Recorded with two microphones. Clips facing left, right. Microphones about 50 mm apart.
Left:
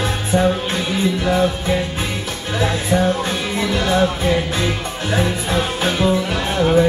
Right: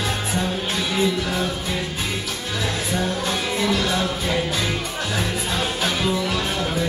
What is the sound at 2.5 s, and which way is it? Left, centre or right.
Music, left.